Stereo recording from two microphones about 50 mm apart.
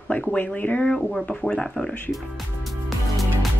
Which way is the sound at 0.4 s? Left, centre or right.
Left.